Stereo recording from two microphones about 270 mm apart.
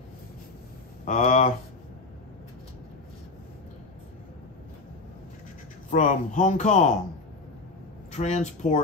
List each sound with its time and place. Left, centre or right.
1.0 s speech: left
5.9 s speech: left
8.1 s speech: left